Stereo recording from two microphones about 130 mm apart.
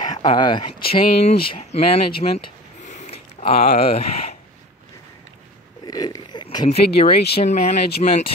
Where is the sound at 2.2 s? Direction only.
50° left (ahead or behind).